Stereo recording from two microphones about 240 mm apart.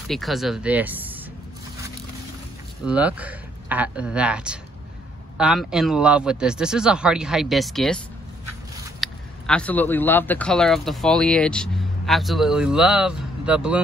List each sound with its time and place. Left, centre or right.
0.1 s speech: centre
2.8 s speech: centre
9.0 s speech: centre